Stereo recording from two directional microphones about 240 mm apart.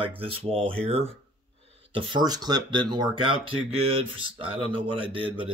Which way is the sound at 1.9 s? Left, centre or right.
Right.